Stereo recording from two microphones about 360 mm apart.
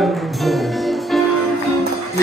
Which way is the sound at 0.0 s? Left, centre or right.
Centre.